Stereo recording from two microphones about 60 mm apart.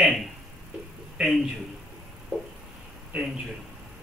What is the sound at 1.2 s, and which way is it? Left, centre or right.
Speech, centre.